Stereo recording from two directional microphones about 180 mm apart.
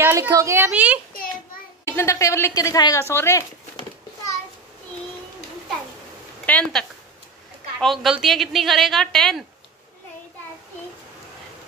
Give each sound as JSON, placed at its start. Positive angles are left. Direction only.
{"t": 0.0, "sound": "a child's voice", "side_deg": -15}
{"t": 1.9, "sound": "speech", "side_deg": 15}
{"t": 6.4, "sound": "a woman's voice", "side_deg": 5}